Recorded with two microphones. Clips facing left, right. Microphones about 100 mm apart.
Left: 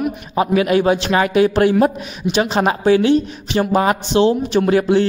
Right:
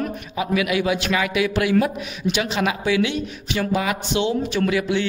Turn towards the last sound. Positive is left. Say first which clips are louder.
# left 7 dB
turn(degrees=40)  # may be behind; listen again after turning